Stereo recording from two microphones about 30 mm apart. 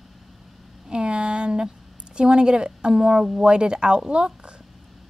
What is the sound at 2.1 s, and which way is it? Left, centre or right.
A woman's voice, right.